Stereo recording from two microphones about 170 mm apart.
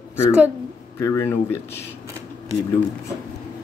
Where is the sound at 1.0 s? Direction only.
15° left (ahead or behind).